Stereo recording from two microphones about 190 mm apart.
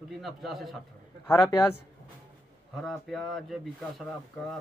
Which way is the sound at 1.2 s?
15° left (ahead or behind).